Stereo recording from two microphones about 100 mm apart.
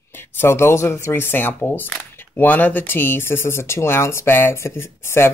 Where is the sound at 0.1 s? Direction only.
20° left (ahead or behind).